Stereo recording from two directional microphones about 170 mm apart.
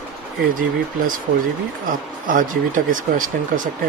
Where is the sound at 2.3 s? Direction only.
50° right (ahead or behind).